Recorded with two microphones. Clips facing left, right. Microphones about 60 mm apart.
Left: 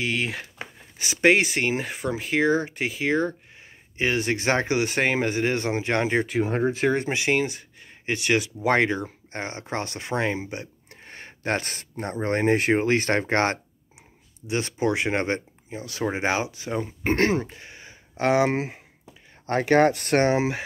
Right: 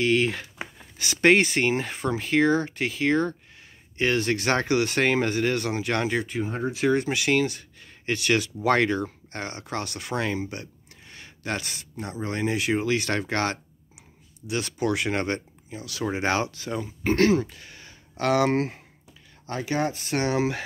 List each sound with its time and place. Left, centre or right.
0.0 s speech: centre
0.9 s speech: centre
1.2 s speech: centre; by 6.2 s left
6.2 s speech: left
6.6 s speech: left
10.9 s speech: left
16.2 s speech: centre
16.8 s speech: left; by 18.8 s centre
19.4 s speech: left
20.3 s speech: centre